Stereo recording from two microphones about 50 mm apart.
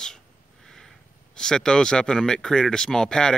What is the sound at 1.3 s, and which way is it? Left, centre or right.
Speech, centre.